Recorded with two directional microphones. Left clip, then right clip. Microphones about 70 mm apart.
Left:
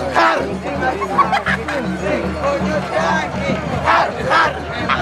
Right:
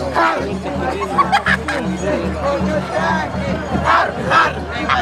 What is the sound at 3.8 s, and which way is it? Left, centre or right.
Battle cry, centre.